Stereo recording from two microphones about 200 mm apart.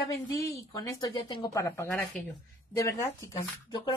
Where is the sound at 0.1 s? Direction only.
15° left (ahead or behind).